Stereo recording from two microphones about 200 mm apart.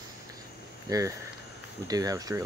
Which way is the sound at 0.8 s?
15° right (ahead or behind).